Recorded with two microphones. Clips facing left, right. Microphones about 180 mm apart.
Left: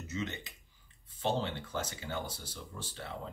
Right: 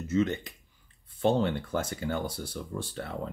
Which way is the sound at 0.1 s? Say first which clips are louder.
Right 12 dB; 50° right (ahead or behind).